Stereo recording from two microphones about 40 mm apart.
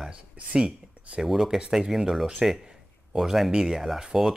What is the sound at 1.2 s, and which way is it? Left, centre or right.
Speech, centre.